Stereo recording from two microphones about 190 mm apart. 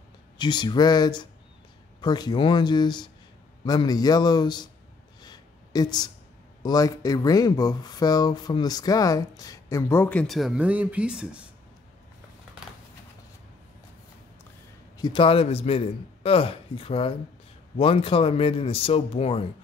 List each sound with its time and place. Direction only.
0.4 s speech: 25° left (ahead or behind)
5.2 s a sound: 20° left (ahead or behind)
6.6 s speech: 20° left (ahead or behind); by 11.2 s 5° right (ahead or behind)
15.0 s speech: 25° left (ahead or behind)